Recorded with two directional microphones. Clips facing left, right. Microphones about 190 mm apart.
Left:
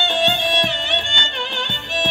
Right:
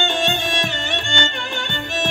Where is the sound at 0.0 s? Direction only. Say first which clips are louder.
Left 1 dB; 45° right (ahead or behind).